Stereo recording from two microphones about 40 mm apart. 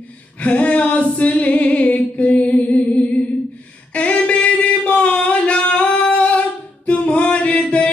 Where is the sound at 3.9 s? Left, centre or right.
Left.